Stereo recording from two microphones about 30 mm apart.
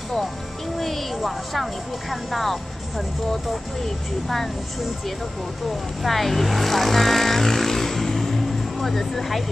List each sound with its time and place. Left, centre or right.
0.7 s speech: centre
3.8 s speech: centre
6.0 s speech: centre